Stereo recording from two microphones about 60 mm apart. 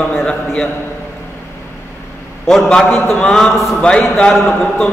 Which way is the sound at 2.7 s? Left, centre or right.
Centre.